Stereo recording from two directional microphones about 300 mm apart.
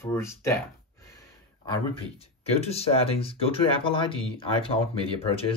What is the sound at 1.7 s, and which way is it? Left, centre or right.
Speech, centre.